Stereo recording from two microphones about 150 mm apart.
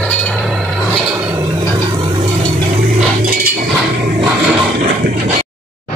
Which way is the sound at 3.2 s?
80° right.